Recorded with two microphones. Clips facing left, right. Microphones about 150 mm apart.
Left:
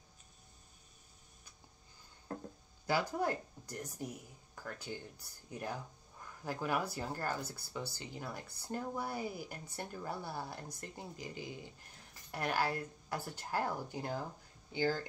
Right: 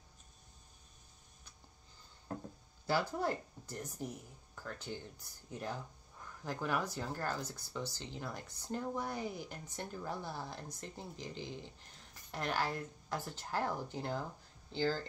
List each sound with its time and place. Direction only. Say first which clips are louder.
2.9 s speech: even; 10° left (ahead or behind)